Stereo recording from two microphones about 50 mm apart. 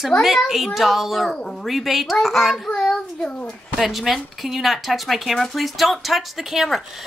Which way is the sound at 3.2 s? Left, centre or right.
Left.